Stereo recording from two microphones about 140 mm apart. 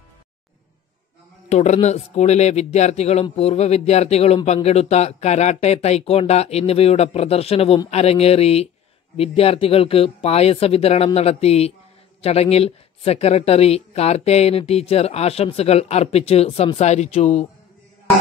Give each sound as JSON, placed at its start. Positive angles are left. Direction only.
{"t": 1.5, "sound": "a woman's voice", "side_deg": 55}